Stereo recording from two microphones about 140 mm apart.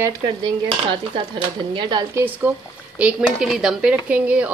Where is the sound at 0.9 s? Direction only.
35° right (ahead or behind).